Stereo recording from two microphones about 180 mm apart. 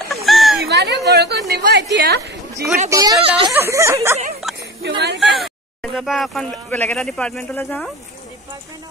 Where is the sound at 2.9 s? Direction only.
20° right (ahead or behind).